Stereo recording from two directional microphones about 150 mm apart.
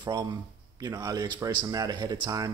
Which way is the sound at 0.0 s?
25° right (ahead or behind).